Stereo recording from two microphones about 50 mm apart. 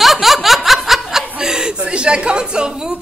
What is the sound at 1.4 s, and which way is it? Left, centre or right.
A woman's voice, centre.